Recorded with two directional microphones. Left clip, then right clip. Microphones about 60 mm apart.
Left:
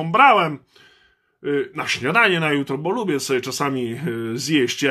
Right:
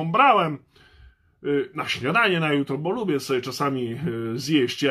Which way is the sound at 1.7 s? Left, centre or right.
Left.